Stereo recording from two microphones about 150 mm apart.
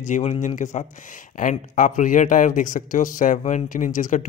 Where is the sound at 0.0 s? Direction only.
50° left (ahead or behind).